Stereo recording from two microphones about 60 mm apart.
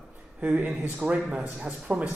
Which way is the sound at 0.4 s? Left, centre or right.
Right.